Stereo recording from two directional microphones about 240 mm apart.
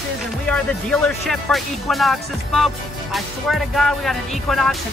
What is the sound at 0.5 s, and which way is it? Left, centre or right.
Speech, centre.